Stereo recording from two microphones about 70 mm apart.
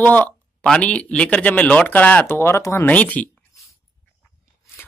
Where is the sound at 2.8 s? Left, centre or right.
Left.